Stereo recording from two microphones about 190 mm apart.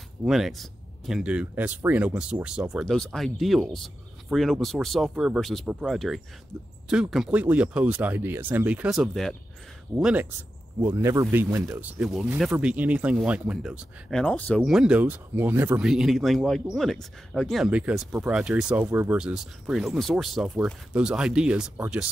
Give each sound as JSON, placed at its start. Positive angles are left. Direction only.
{"t": 0.2, "sound": "speech", "side_deg": 0}
{"t": 14.6, "sound": "speech", "side_deg": -5}